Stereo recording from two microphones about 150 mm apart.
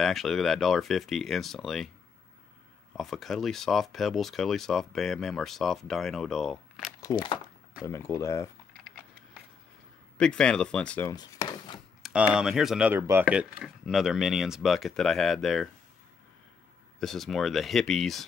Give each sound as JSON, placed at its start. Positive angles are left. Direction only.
{"t": 0.0, "sound": "speech", "side_deg": 0}
{"t": 3.0, "sound": "speech", "side_deg": 0}
{"t": 7.0, "sound": "speech", "side_deg": 20}
{"t": 10.1, "sound": "speech", "side_deg": 5}
{"t": 11.1, "sound": "chop", "side_deg": 25}
{"t": 12.0, "sound": "speech", "side_deg": -5}
{"t": 17.0, "sound": "speech", "side_deg": 0}